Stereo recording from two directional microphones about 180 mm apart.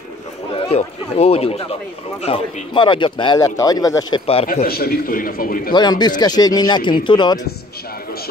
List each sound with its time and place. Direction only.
0.7 s speech: 35° left (ahead or behind); by 4.2 s 20° left (ahead or behind)
4.5 s a man's voice: 55° left (ahead or behind)
5.7 s speech: 25° left (ahead or behind)